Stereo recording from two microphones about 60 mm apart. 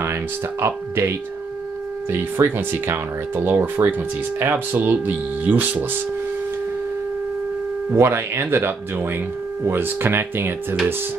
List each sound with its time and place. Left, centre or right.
0.0 s speech: right
7.9 s speech: right